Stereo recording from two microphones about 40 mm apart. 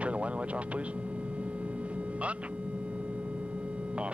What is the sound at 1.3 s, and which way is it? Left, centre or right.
Vehicle, right.